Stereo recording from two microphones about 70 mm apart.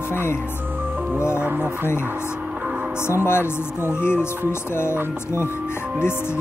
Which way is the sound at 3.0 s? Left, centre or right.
Left.